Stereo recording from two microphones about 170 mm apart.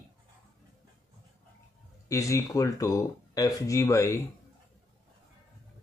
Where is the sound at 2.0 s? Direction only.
20° left (ahead or behind).